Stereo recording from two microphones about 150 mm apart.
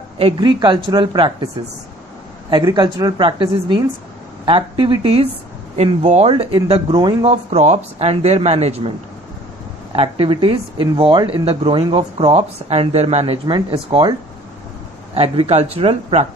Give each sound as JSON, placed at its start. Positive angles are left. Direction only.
{"t": 0.2, "sound": "speech", "side_deg": -30}
{"t": 2.6, "sound": "speech", "side_deg": -25}
{"t": 7.2, "sound": "speech", "side_deg": -45}
{"t": 9.9, "sound": "speech", "side_deg": -35}
{"t": 15.1, "sound": "speech", "side_deg": -40}